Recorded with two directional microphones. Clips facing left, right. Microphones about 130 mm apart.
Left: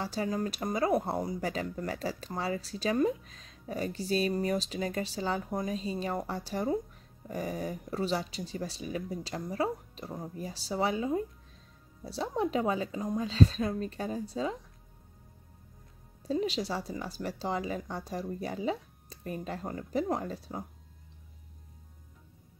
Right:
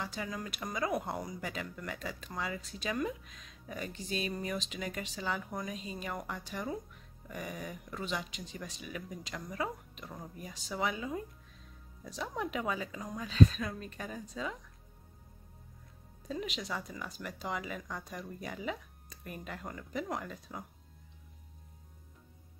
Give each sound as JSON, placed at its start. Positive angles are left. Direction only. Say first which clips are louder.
{"t": 0.0, "sound": "speech", "louder": "left 7 dB", "side_deg": 35}
{"t": 16.2, "sound": "speech", "louder": "left 8 dB", "side_deg": 30}